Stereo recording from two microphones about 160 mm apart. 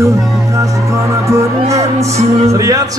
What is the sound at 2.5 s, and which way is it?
Music, 20° right (ahead or behind).